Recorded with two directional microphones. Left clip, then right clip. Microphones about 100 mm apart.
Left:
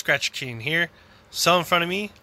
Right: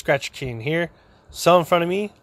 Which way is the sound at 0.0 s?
40° right (ahead or behind).